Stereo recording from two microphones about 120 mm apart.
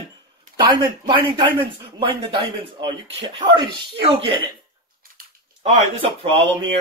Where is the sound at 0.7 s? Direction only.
40° right (ahead or behind).